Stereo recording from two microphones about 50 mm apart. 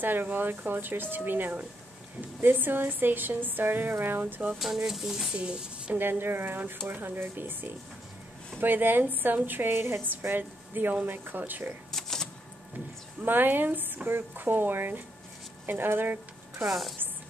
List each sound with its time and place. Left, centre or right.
0.0 s a woman's voice: right
4.6 s speech: centre
5.4 s speech: right
5.9 s a woman's voice: right
10.3 s speech: right
11.9 s a sound: centre
13.2 s speech: right
16.6 s speech: centre